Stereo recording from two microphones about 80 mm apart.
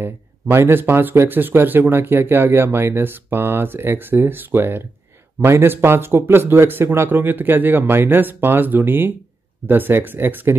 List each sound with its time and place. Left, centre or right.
0.0 s a man's voice: right